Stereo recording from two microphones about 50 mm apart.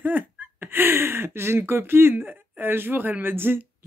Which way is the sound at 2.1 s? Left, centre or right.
Right.